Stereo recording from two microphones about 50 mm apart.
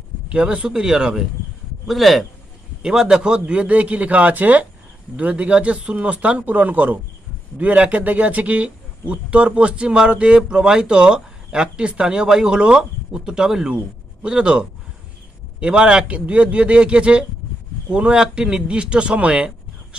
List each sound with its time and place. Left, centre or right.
0.3 s speech: right
1.9 s speech: centre
2.8 s a man's voice: centre